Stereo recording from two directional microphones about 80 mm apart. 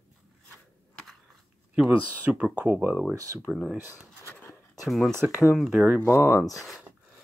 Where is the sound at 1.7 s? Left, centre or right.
Centre.